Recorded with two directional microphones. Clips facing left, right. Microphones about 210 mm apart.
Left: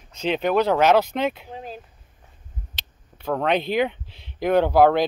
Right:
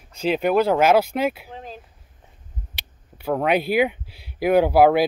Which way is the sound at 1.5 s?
10° left (ahead or behind).